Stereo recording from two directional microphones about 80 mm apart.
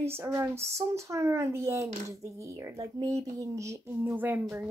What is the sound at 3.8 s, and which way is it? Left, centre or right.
Speech, right.